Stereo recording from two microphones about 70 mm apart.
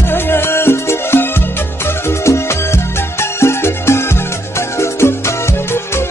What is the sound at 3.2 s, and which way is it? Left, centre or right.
Music, left.